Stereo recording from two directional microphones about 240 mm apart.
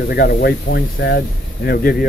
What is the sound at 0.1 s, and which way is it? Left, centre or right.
Speech, left.